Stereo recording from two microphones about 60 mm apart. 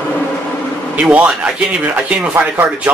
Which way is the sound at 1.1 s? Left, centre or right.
Right.